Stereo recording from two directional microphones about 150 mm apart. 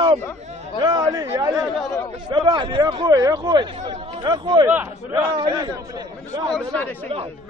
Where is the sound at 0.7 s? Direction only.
25° right (ahead or behind).